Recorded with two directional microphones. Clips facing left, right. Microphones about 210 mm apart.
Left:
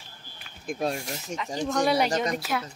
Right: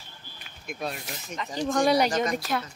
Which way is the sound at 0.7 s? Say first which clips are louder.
Left 5 dB; 40° left (ahead or behind).